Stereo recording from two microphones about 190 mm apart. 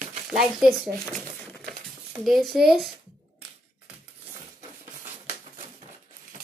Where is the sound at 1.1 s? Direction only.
5° left (ahead or behind).